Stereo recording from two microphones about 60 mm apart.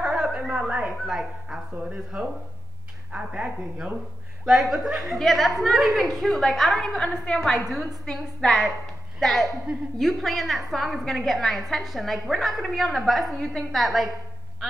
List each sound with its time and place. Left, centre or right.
0.0 s a sound: centre
1.0 s a woman's voice: centre
2.1 s a woman's voice: right
4.5 s a woman's voice: centre